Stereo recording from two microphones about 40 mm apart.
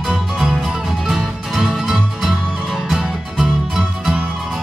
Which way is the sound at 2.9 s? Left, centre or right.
Centre.